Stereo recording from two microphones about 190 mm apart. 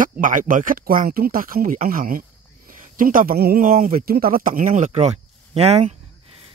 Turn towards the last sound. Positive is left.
turn(degrees=-30)  # may be behind; listen again after turning